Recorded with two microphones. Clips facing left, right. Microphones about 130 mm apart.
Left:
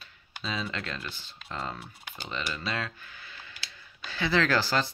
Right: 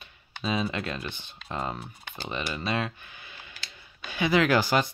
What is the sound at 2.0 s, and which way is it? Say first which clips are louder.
Speech: right 4 dB; 15° left (ahead or behind).